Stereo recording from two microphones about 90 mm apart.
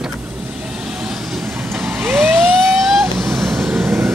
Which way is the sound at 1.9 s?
20° right (ahead or behind).